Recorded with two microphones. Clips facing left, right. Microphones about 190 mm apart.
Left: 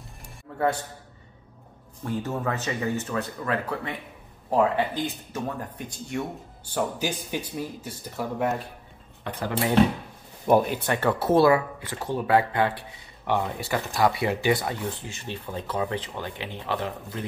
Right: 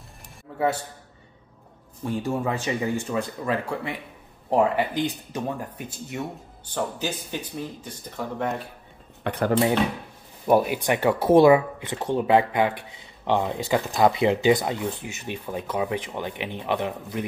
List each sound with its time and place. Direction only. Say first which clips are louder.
0.5 s a sound: right 1 dB; 5° right (ahead or behind)
2.0 s speech: right 2 dB; 15° right (ahead or behind)
5.9 s speech: left 4 dB; 5° right (ahead or behind)
6.7 s speech: left 1 dB; 10° left (ahead or behind)
9.2 s speech: right 6 dB; 65° right (ahead or behind)
10.4 s speech: right 1 dB; 5° right (ahead or behind)
10.8 s speech: right 3 dB; 15° right (ahead or behind)